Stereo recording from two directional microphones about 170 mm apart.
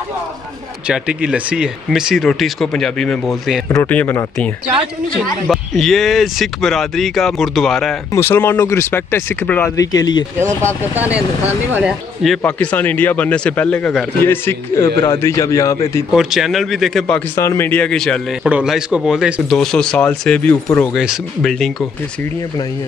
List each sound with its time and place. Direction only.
0.8 s speech: 5° right (ahead or behind)
3.7 s speech: 10° left (ahead or behind)
5.5 s speech: centre (ahead or behind)
8.1 s speech: 15° left (ahead or behind)
11.4 s speech: 10° right (ahead or behind)
12.4 s speech: 10° left (ahead or behind)
16.1 s speech: centre (ahead or behind)
17.4 s speech: 15° left (ahead or behind)